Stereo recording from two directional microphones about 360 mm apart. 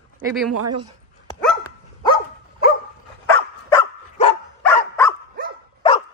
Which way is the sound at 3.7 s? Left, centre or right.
Centre.